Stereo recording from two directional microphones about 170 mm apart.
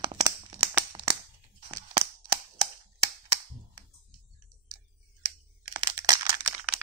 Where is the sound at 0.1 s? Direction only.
30° right (ahead or behind).